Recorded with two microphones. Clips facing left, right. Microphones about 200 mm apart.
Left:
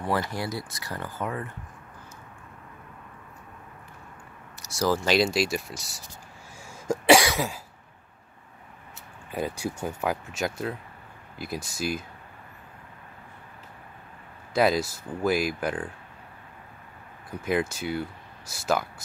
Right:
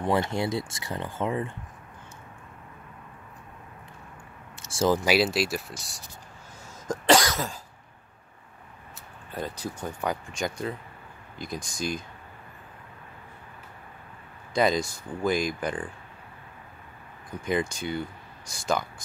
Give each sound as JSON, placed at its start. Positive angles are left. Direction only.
{"t": 0.0, "sound": "speech", "side_deg": -20}
{"t": 4.7, "sound": "speech", "side_deg": -20}
{"t": 5.0, "sound": "speech", "side_deg": -5}
{"t": 6.9, "sound": "cough", "side_deg": 10}
{"t": 9.3, "sound": "speech", "side_deg": 10}
{"t": 14.5, "sound": "speech", "side_deg": 5}
{"t": 17.5, "sound": "speech", "side_deg": 5}